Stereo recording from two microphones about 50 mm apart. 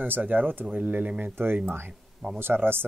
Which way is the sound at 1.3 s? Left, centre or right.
Right.